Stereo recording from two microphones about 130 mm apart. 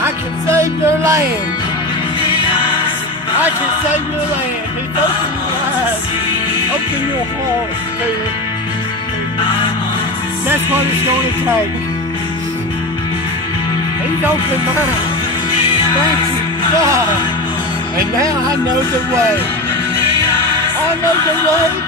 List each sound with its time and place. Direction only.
0.0 s music: 20° right (ahead or behind)
17.9 s speech: 25° right (ahead or behind)